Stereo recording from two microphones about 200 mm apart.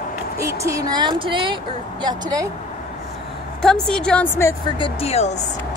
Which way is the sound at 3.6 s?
Centre (ahead or behind).